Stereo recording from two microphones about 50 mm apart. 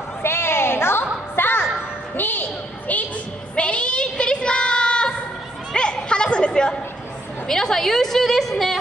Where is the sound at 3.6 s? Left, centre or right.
Left.